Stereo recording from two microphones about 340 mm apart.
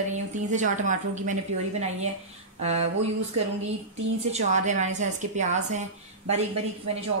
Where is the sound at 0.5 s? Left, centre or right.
Right.